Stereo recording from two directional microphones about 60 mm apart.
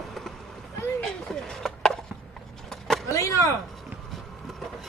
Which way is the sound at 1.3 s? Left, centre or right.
Centre.